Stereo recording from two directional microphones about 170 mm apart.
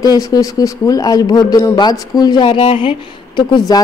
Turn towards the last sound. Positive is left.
turn(degrees=25)  # may be behind; listen again after turning